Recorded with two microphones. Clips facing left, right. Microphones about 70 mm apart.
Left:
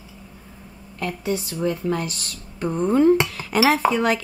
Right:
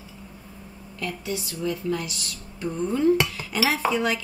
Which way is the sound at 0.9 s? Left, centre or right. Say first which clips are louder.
Left 5 dB; left.